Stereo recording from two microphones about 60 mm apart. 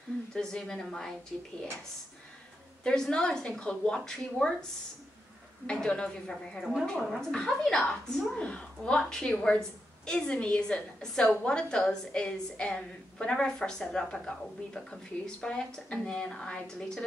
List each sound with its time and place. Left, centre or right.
0.3 s a woman's voice: centre
2.8 s a woman's voice: centre
5.7 s a woman's voice: centre